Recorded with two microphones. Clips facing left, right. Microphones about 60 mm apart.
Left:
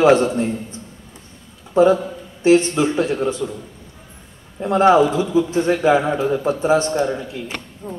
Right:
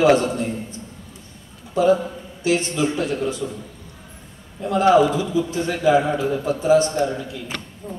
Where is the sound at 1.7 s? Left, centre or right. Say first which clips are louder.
Left 3 dB; left.